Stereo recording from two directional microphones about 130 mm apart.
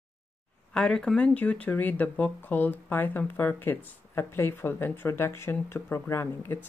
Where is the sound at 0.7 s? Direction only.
5° left (ahead or behind).